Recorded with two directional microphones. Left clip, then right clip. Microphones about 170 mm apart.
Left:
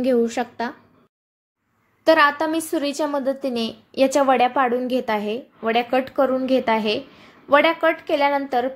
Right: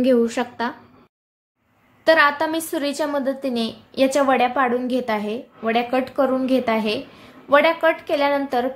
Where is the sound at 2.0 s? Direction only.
25° left (ahead or behind).